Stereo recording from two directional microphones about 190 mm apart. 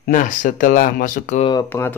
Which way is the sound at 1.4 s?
20° left (ahead or behind).